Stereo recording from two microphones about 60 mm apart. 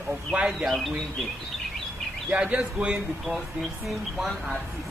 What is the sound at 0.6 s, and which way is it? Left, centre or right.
Speech, centre.